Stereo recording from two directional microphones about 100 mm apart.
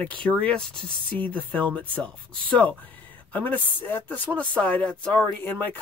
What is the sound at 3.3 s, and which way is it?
Speech, 15° left (ahead or behind).